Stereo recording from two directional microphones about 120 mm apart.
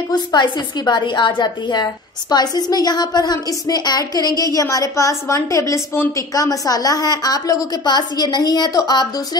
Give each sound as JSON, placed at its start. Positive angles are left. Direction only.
{"t": 0.1, "sound": "a woman's voice", "side_deg": 35}